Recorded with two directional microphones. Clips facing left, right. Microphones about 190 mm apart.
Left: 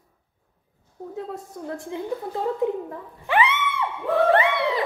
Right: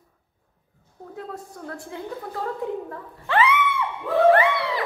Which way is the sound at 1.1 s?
20° left (ahead or behind).